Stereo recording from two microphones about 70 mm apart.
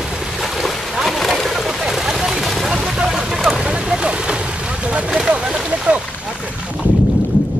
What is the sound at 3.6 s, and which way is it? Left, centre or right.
Vehicle, centre.